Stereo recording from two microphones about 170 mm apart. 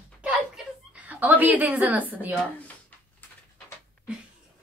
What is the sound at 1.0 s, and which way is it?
Speech, 10° right (ahead or behind).